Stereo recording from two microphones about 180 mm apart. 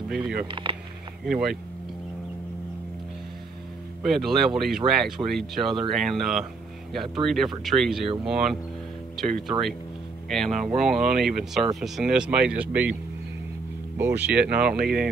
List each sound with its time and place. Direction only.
0.5 s speech: 30° right (ahead or behind)
1.2 s speech: 5° right (ahead or behind)
4.1 s speech: centre (ahead or behind)
13.9 s speech: 10° right (ahead or behind)